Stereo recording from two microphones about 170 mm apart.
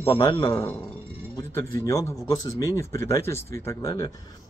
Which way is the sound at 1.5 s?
15° left (ahead or behind).